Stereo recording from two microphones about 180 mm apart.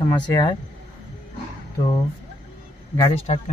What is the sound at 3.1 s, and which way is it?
Speech, 35° left (ahead or behind).